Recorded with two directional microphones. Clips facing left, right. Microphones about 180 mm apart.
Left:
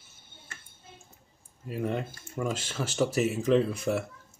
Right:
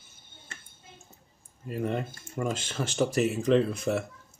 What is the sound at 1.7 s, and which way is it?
Speech, centre (ahead or behind).